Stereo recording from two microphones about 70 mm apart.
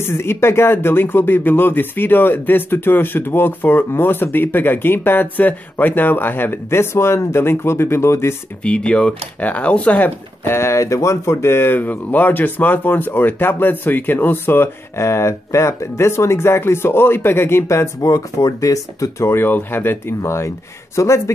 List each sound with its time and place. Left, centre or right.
0.0 s speech: left
8.6 s speech: centre; by 15.0 s left
15.0 s speech: left
19.2 s speech: left
20.2 s speech: left